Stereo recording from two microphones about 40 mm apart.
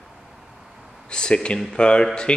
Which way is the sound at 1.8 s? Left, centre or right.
Left.